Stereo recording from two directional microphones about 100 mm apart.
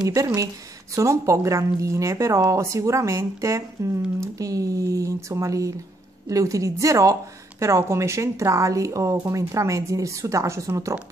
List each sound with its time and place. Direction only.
0.0 s speech: 35° right (ahead or behind)